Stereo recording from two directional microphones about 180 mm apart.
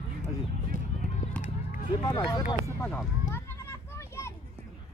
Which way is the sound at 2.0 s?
25° left (ahead or behind).